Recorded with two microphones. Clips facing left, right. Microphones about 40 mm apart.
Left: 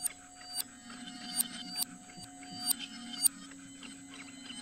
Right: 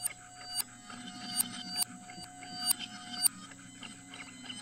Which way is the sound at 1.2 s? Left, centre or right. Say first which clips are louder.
Right 2 dB; centre.